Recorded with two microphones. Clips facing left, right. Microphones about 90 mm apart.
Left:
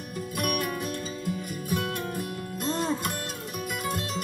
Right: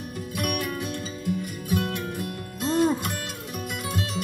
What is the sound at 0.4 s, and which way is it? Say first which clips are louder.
Music: even; 45° left (ahead or behind).